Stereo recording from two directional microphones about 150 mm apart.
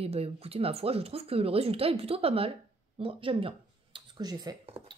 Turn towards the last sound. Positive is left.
turn(degrees=-25)  # may be behind; listen again after turning